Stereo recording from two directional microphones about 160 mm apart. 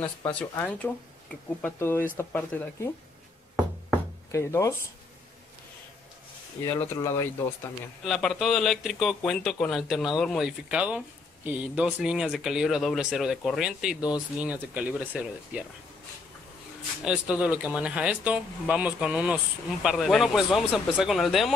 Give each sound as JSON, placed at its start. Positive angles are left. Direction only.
{"t": 0.4, "sound": "speech", "side_deg": 10}
{"t": 4.3, "sound": "speech", "side_deg": 20}
{"t": 6.6, "sound": "speech", "side_deg": 20}
{"t": 8.0, "sound": "speech", "side_deg": 0}
{"t": 17.0, "sound": "speech", "side_deg": -5}